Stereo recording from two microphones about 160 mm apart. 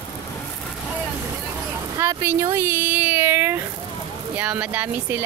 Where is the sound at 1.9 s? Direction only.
15° right (ahead or behind).